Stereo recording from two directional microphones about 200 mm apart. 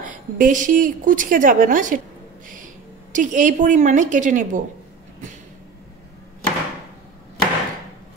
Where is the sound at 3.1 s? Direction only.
40° right (ahead or behind).